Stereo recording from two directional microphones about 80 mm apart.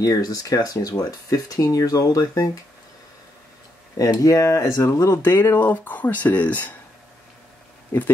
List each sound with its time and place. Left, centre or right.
0.0 s speech: left
4.0 s speech: left; by 6.7 s centre